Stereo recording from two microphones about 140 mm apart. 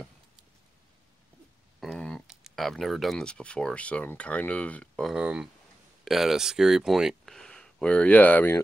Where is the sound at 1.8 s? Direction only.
5° left (ahead or behind).